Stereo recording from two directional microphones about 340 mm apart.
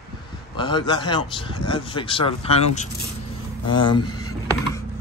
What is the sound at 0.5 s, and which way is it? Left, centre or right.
Speech, centre.